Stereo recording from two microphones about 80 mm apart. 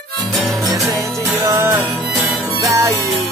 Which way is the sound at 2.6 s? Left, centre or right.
Right.